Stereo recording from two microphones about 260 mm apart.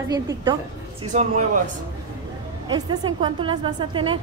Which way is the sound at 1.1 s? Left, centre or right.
Right.